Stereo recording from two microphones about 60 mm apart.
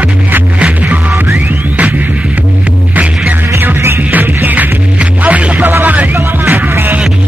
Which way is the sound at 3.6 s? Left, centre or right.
Right.